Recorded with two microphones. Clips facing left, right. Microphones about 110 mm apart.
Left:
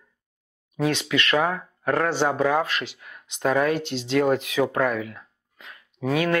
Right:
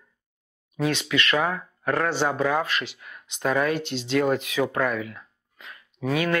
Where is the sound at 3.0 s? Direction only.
35° left (ahead or behind).